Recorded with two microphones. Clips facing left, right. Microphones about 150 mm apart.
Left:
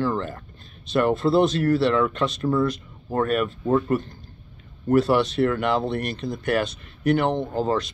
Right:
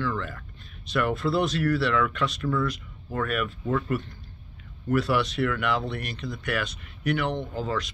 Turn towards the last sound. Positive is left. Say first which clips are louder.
# left 6 dB
turn(degrees=30)  # may be behind; listen again after turning